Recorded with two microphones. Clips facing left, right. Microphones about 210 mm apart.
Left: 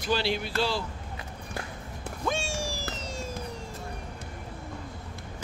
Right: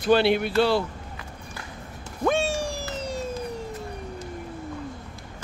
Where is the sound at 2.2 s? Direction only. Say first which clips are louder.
Right 8 dB; 60° right (ahead or behind).